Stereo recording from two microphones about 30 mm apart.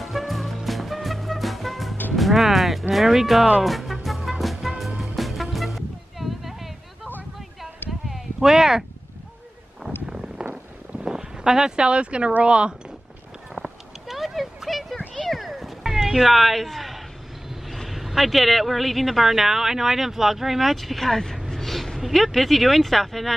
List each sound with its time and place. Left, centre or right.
0.0 s music: centre
2.9 s speech: centre
3.6 s music: centre
7.3 s clip-clop: centre
8.4 s a sound: centre
9.8 s wind noise: right
10.5 s a sound: right
11.8 s speech: right
13.6 s a sound: centre
17.6 s speech: centre
21.1 s speech: centre